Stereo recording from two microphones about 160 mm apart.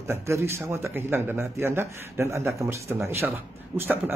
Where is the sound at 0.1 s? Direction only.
15° right (ahead or behind).